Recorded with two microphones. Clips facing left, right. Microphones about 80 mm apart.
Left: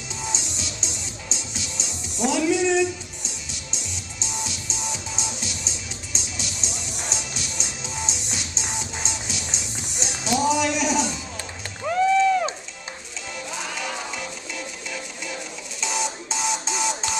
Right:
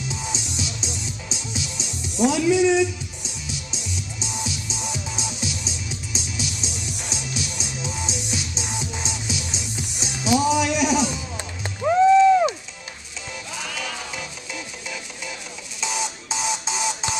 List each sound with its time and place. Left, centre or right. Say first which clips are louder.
0.1 s music: right 1 dB; centre
11.3 s music: right 3 dB; centre
13.7 s music: left 1 dB; centre
14.1 s music: left 1 dB; centre